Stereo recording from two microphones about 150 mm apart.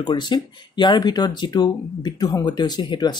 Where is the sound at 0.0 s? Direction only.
30° left (ahead or behind).